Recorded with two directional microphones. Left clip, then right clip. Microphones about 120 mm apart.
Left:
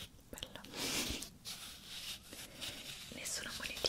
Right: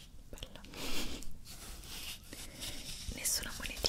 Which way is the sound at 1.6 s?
40° right (ahead or behind).